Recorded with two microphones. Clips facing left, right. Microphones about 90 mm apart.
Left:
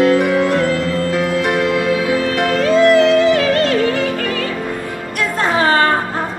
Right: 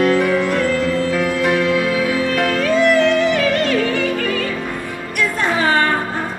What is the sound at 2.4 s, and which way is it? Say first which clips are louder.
Music: left 4 dB; 30° left (ahead or behind).